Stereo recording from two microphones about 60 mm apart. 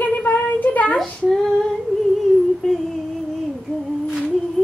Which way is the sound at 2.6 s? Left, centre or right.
Centre.